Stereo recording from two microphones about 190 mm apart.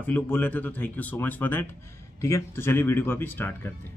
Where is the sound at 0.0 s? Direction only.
10° left (ahead or behind).